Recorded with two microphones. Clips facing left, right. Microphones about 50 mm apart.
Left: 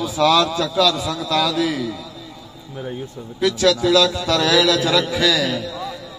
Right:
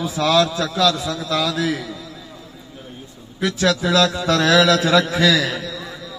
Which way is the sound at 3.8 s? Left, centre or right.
Right.